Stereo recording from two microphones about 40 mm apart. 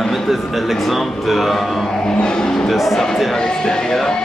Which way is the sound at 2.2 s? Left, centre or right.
Left.